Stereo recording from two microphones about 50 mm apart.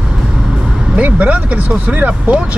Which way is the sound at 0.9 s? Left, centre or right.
Right.